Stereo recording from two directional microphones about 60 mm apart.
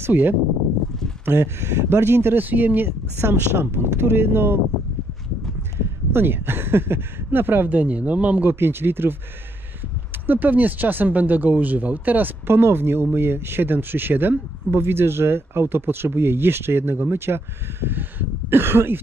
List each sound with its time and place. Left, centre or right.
0.0 s speech: right
6.1 s speech: right
8.5 s speech: right
10.2 s speech: right